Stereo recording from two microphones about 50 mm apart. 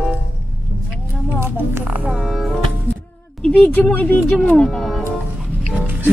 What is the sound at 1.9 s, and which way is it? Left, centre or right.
Speech, right.